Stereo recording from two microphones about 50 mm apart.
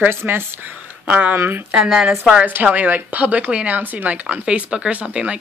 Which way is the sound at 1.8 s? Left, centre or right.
Centre.